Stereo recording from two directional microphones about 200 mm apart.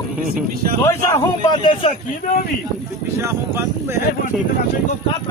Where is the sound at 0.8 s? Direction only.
20° left (ahead or behind).